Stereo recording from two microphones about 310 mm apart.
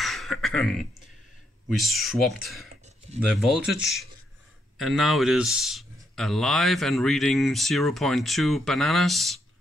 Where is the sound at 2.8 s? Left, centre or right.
Right.